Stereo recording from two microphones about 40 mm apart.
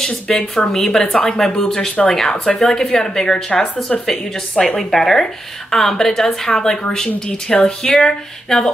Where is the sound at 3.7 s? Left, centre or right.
Left.